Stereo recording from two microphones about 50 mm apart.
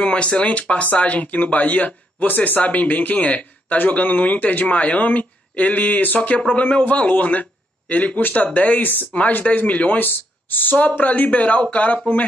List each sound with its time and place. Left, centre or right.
0.0 s speech: left
9.9 s speech: left
10.9 s speech: left